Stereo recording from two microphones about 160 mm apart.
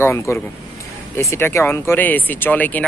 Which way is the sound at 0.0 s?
15° left (ahead or behind).